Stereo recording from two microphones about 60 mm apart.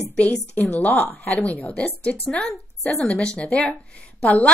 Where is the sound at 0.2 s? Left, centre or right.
Left.